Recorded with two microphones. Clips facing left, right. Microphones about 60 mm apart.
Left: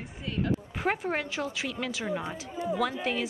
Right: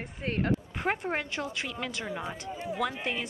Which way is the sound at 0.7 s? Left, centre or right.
Centre.